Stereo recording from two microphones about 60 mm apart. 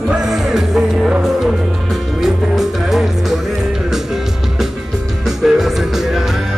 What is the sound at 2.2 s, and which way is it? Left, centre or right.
Music, centre.